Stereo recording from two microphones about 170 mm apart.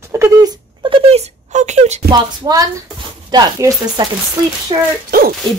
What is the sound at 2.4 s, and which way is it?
Speech, 25° right (ahead or behind).